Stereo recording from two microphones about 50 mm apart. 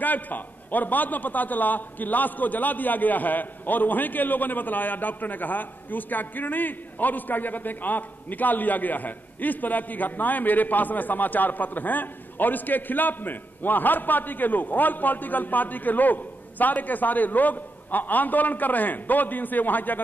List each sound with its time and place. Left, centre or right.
0.0 s a man's voice: left